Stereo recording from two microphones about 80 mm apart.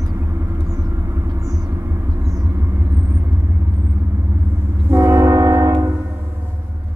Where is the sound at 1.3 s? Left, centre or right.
Right.